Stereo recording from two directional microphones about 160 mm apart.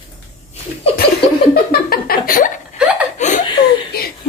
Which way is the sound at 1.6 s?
70° left (ahead or behind).